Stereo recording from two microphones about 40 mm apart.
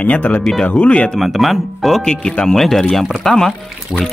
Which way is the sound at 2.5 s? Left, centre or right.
Centre.